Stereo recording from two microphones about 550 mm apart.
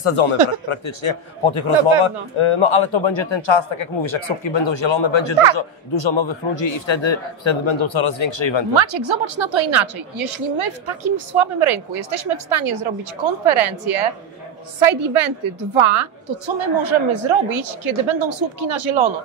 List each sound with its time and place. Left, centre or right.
0.0 s a man's voice: left
8.7 s a woman's voice: right